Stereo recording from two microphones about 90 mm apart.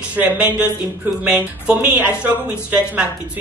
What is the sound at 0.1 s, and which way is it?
Speech, 15° right (ahead or behind).